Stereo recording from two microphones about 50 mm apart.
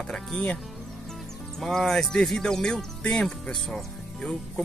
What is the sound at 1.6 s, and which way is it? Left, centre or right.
Speech, centre.